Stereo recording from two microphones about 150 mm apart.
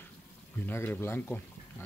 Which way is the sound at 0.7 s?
15° left (ahead or behind).